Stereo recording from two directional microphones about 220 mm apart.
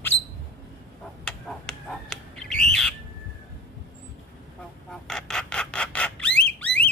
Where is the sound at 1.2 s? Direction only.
5° left (ahead or behind).